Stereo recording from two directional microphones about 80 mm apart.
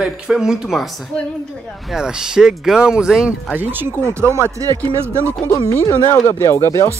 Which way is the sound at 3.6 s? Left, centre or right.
Right.